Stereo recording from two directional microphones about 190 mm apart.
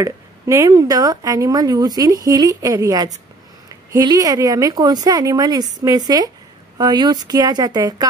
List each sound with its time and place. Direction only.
0.0 s speech: 15° right (ahead or behind)